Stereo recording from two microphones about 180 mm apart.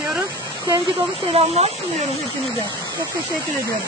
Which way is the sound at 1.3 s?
35° right (ahead or behind).